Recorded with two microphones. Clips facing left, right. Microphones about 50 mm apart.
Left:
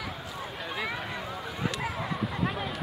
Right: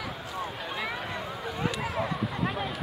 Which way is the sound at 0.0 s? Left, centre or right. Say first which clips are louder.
Right 2 dB; centre.